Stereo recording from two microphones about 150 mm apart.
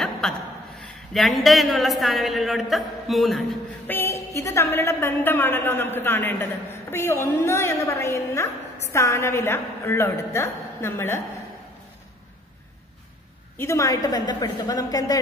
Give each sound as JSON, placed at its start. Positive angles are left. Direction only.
{"t": 0.2, "sound": "chuckle", "side_deg": 0}
{"t": 1.1, "sound": "a man's voice", "side_deg": 0}
{"t": 3.8, "sound": "a sound", "side_deg": 15}
{"t": 4.4, "sound": "a woman's voice", "side_deg": 15}
{"t": 13.6, "sound": "a woman's voice", "side_deg": 20}